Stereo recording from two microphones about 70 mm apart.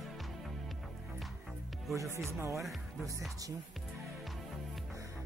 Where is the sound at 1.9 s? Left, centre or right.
Right.